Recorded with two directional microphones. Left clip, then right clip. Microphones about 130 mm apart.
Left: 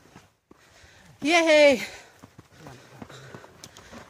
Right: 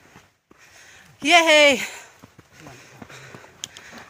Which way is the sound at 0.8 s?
5° left (ahead or behind).